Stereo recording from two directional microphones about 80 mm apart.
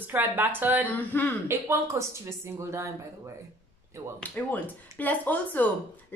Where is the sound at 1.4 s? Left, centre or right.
Right.